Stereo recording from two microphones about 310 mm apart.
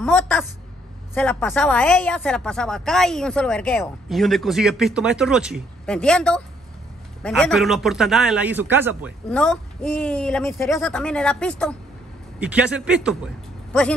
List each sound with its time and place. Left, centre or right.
0.0 s a woman's voice: centre